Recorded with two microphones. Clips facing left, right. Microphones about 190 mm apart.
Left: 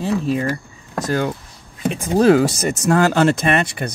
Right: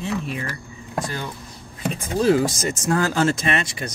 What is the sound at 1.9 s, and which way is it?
Speech, 75° left (ahead or behind).